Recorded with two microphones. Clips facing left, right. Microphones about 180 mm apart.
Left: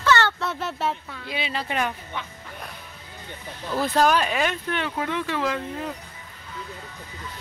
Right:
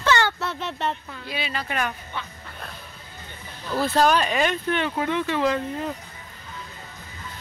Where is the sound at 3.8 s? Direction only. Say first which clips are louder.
Right 1 dB; 10° left (ahead or behind).